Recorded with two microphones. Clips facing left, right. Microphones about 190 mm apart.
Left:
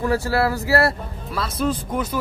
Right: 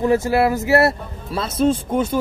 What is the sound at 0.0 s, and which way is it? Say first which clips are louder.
A man's voice: right 4 dB; 20° right (ahead or behind).